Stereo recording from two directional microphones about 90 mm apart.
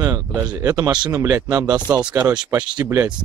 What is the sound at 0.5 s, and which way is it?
Speech, 40° right (ahead or behind).